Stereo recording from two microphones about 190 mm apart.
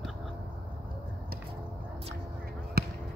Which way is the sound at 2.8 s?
55° right (ahead or behind).